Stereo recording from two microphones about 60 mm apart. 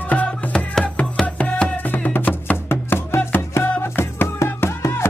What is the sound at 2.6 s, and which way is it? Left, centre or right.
Music, left.